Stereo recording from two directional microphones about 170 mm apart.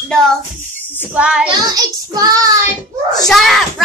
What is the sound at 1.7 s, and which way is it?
Child singing, 20° right (ahead or behind).